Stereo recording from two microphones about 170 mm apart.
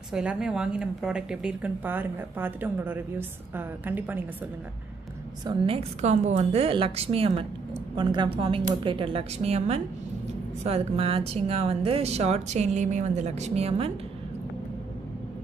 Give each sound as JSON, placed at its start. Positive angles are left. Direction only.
{"t": 0.1, "sound": "speech", "side_deg": -5}
{"t": 5.4, "sound": "a woman's voice", "side_deg": -25}
{"t": 5.8, "sound": "a woman's voice", "side_deg": -40}